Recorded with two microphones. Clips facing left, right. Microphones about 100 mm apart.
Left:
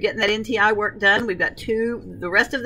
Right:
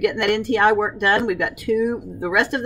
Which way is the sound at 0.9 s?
15° right (ahead or behind).